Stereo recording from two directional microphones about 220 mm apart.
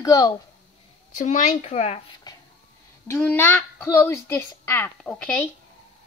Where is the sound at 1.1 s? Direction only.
35° left (ahead or behind).